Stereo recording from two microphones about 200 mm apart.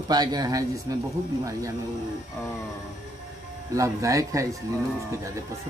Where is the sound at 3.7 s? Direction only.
15° right (ahead or behind).